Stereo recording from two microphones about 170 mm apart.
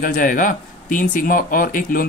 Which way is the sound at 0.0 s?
50° left (ahead or behind).